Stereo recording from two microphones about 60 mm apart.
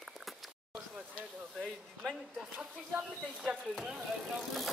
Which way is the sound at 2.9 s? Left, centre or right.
Right.